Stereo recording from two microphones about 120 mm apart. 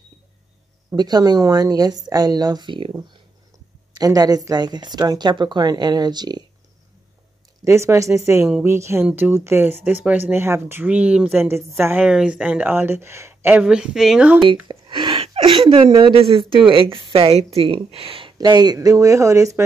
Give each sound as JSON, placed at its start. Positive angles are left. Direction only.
{"t": 0.9, "sound": "speech", "side_deg": -35}
{"t": 3.9, "sound": "speech", "side_deg": -30}
{"t": 7.6, "sound": "speech", "side_deg": -25}
{"t": 14.4, "sound": "a sound", "side_deg": -40}
{"t": 16.0, "sound": "a woman's voice", "side_deg": -50}
{"t": 18.4, "sound": "speech", "side_deg": -35}